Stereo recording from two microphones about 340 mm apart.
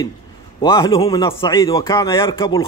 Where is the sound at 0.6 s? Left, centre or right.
Centre.